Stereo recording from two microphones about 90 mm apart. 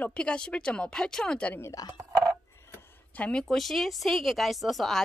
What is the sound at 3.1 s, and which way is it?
Speech, 15° left (ahead or behind).